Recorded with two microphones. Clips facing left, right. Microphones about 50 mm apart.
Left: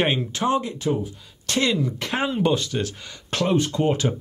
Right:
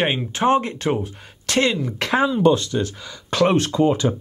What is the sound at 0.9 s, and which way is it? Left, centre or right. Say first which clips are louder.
Speech: right 2 dB; right.